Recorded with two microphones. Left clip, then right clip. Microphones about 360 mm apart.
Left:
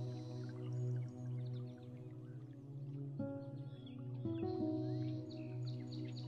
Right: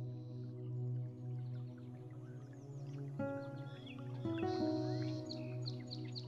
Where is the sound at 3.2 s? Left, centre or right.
Right.